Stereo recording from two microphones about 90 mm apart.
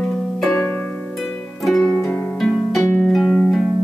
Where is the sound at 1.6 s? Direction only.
5° left (ahead or behind).